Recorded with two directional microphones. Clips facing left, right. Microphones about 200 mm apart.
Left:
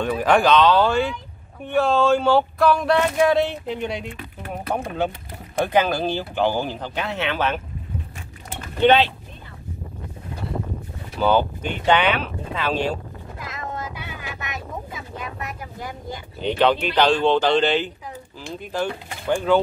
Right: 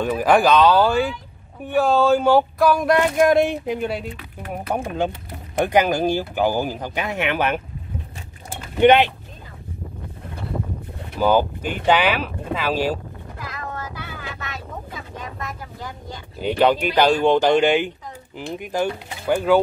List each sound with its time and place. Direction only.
0.0 s speech: 5° right (ahead or behind)
8.7 s speech: 15° right (ahead or behind)
11.1 s speech: 10° right (ahead or behind)
13.6 s boat: 20° left (ahead or behind)
16.3 s speech: 10° right (ahead or behind)